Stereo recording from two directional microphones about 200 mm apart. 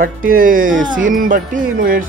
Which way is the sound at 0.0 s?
45° right (ahead or behind).